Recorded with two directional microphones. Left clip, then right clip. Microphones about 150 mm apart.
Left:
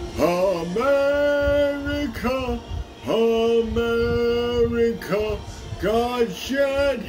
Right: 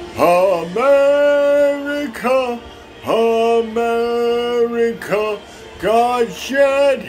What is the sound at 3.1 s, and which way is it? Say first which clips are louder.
Mantra: right 5 dB; 35° left (ahead or behind).